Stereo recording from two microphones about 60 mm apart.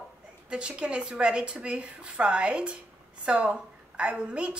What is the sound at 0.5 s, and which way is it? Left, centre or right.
A woman's voice, centre.